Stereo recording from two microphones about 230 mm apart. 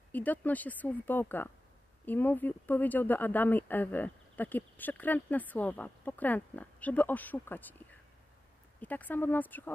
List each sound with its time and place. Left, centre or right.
0.1 s speech: centre
8.8 s speech: centre